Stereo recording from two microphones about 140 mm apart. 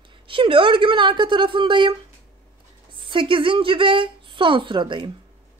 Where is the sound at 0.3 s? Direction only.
40° right (ahead or behind).